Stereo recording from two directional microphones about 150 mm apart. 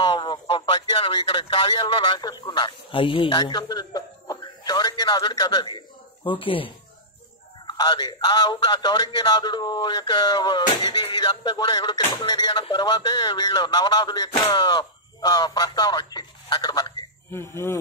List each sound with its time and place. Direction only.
0.0 s a sound: 30° left (ahead or behind)
1.1 s speech: 35° left (ahead or behind)
17.3 s speech: 15° left (ahead or behind)